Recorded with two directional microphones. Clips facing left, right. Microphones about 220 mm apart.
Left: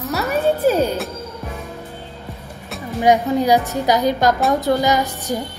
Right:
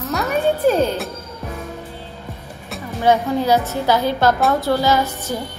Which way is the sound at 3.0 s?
15° left (ahead or behind).